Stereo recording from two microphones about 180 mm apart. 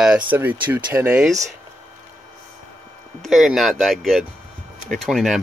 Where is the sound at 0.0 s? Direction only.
5° right (ahead or behind).